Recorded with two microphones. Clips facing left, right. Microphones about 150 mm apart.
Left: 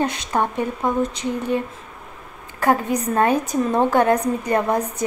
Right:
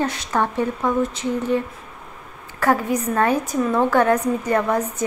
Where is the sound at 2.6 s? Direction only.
15° left (ahead or behind).